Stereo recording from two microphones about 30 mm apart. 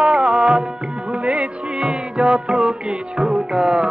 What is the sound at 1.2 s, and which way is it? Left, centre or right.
Music, right.